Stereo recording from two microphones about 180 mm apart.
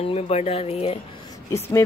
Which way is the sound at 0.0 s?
35° left (ahead or behind).